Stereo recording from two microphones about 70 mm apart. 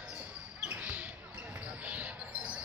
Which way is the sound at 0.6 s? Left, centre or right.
Right.